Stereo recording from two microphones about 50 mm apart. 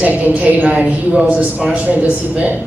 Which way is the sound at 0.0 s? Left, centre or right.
Right.